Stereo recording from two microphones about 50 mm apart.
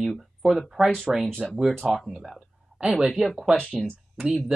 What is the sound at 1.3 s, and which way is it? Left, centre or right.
Speech, centre.